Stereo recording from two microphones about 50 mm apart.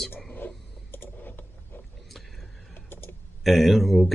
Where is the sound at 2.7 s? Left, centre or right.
Left.